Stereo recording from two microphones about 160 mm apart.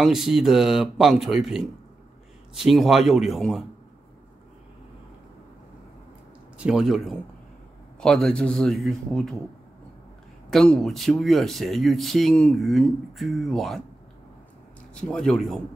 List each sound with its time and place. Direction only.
0.0 s speech: centre (ahead or behind)
6.6 s speech: 5° right (ahead or behind)
10.5 s speech: 5° left (ahead or behind)
15.0 s speech: 5° left (ahead or behind)